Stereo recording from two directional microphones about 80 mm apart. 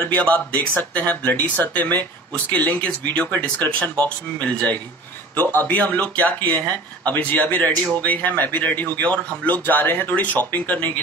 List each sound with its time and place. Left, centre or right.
0.1 s speech: centre